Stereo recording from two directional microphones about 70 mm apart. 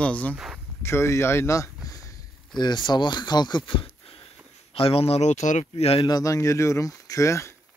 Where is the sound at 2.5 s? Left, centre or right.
Left.